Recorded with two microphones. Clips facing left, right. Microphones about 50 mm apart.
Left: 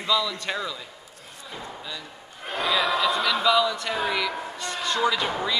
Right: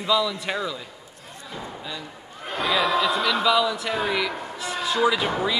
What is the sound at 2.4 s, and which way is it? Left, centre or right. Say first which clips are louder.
A man's voice: right 1 dB; centre.